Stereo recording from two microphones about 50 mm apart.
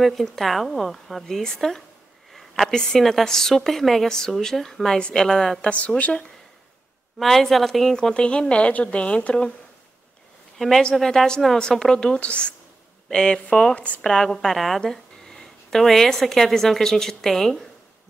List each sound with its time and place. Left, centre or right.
0.0 s a woman's voice: centre
2.3 s a sound: centre
2.7 s a woman's voice: centre
5.6 s speech: left
7.2 s a woman's voice: centre
7.9 s speech: centre
10.8 s a woman's voice: centre